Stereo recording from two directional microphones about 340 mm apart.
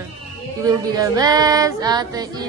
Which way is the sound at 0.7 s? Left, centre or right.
Centre.